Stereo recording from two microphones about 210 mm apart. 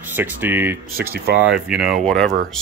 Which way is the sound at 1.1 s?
50° right (ahead or behind).